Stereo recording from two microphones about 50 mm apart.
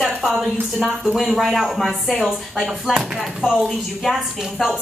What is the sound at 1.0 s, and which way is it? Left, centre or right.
Speech, centre.